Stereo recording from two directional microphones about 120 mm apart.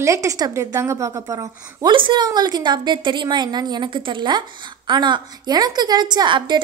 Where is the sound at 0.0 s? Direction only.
25° right (ahead or behind).